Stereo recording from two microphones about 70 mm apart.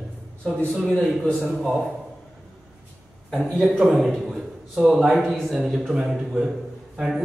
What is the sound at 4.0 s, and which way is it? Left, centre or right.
A man's voice, centre.